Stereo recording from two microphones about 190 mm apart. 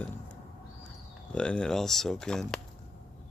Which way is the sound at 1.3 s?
5° left (ahead or behind).